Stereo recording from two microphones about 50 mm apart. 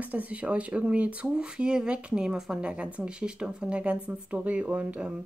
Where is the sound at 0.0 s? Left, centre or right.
Right.